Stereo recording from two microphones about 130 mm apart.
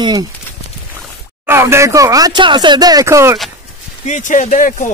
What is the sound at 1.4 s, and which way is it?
Speech, 20° right (ahead or behind).